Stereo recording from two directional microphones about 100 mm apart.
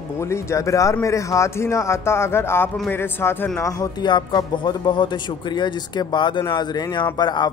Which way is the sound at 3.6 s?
40° left (ahead or behind).